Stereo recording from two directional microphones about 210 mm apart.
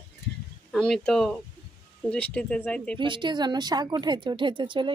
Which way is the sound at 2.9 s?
25° right (ahead or behind).